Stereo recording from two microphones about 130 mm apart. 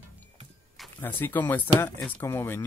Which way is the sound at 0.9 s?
15° left (ahead or behind).